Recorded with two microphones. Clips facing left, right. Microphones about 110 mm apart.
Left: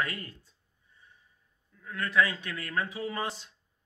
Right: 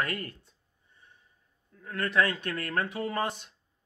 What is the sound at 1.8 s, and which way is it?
A man's voice, 50° right (ahead or behind).